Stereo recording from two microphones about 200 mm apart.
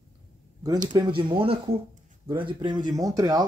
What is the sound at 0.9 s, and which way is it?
Speech, 25° right (ahead or behind).